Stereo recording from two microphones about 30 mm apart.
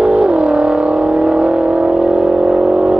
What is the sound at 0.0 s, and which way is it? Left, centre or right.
Vehicle, right.